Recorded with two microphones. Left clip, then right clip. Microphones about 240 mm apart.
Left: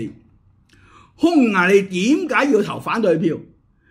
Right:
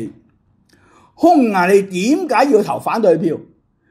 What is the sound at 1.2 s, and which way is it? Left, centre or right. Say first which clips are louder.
Speech: right 4 dB; centre.